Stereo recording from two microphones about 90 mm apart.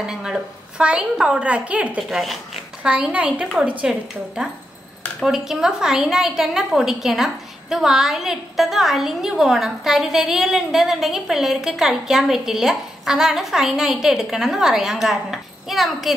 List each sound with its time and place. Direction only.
0.0 s a woman's voice: 5° right (ahead or behind)
2.0 s speech: 5° right (ahead or behind)
2.9 s a woman's voice: 15° right (ahead or behind)
5.2 s a woman's voice: 5° right (ahead or behind)